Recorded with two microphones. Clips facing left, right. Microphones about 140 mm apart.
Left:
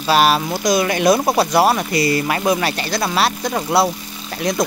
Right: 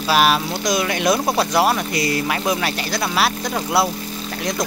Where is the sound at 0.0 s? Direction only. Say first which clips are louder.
Left 2 dB; centre (ahead or behind).